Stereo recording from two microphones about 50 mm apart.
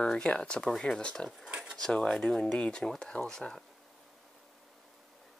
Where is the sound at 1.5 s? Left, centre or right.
Centre.